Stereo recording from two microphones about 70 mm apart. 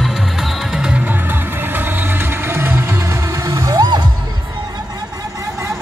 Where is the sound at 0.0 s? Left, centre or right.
Centre.